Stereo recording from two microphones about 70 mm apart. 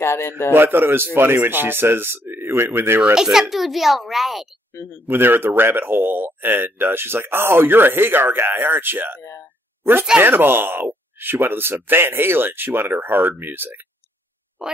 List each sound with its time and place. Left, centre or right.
0.0 s a man's voice: left
0.5 s speech: right
3.2 s a child's voice: centre
5.0 s speech: right
10.2 s speech: right
14.6 s frog: centre